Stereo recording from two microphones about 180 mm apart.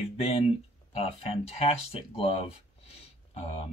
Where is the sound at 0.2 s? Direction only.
35° left (ahead or behind).